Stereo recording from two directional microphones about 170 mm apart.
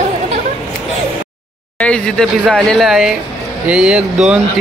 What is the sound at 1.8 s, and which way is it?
Speech, 5° left (ahead or behind).